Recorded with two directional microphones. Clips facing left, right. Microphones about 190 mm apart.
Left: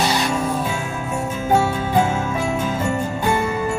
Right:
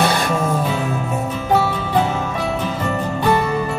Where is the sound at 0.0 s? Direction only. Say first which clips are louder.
Right 2 dB; 55° right (ahead or behind).